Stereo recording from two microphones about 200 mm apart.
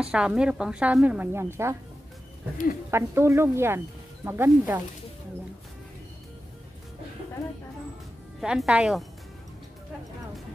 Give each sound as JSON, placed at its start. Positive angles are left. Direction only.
{"t": 0.0, "sound": "speech", "side_deg": -5}
{"t": 2.5, "sound": "speech", "side_deg": 45}
{"t": 2.9, "sound": "speech", "side_deg": -15}
{"t": 8.4, "sound": "speech", "side_deg": 0}